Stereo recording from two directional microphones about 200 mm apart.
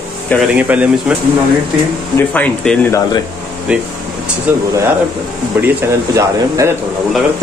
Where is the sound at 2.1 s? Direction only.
10° left (ahead or behind).